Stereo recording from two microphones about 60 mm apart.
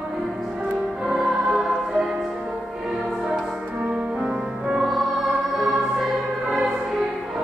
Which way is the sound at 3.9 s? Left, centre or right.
Centre.